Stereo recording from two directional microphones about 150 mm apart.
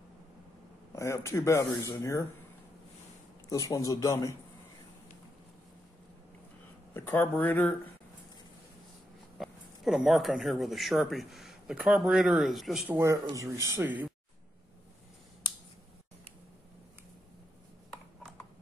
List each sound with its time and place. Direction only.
0.9 s speech: 20° left (ahead or behind)
3.4 s speech: 20° left (ahead or behind)
6.9 s speech: 15° left (ahead or behind)
9.4 s speech: centre (ahead or behind)
12.9 s speech: 20° right (ahead or behind)